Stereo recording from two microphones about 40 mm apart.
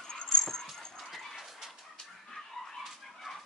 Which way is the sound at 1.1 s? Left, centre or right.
Centre.